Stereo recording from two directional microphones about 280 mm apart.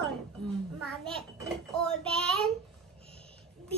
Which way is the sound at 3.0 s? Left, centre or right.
Right.